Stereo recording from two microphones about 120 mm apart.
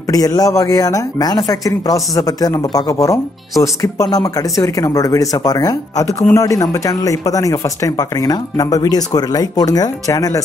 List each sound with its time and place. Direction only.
0.1 s speech: 30° left (ahead or behind)